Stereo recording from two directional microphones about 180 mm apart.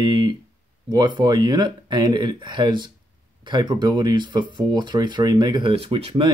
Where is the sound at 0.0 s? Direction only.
25° right (ahead or behind).